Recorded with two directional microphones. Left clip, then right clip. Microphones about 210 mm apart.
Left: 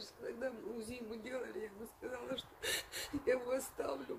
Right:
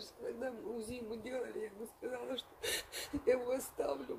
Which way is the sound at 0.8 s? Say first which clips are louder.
Right 2 dB; 15° right (ahead or behind).